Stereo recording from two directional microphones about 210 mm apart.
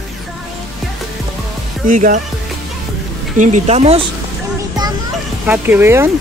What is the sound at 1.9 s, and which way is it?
Speech, 40° right (ahead or behind).